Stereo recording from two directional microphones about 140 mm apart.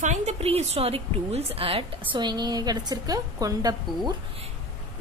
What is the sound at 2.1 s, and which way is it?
A woman's voice, 30° right (ahead or behind).